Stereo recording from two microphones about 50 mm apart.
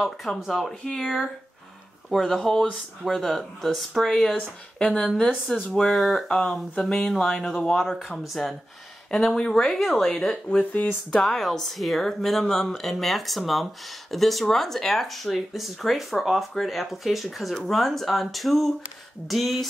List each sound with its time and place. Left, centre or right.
0.3 s speech: centre
4.4 s speech: left
5.8 s speech: centre
10.6 s speech: left
11.1 s speech: centre